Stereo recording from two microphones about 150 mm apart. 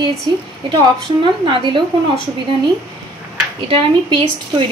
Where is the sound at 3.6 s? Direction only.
35° right (ahead or behind).